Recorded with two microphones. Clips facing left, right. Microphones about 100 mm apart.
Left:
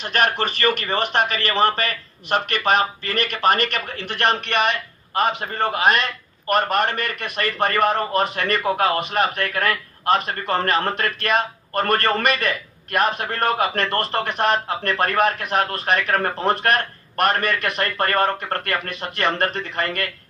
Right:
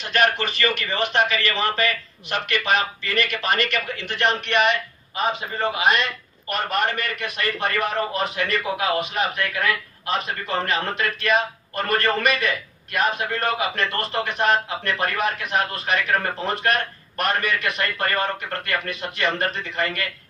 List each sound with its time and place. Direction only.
0.0 s a man's voice: 45° left (ahead or behind)